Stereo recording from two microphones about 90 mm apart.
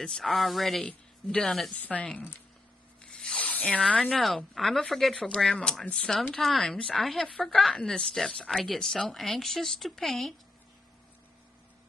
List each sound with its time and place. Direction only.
0.0 s a woman's voice: 5° left (ahead or behind)
1.7 s a woman's voice: 15° left (ahead or behind)